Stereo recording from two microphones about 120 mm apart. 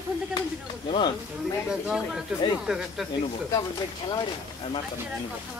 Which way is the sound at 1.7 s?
5° right (ahead or behind).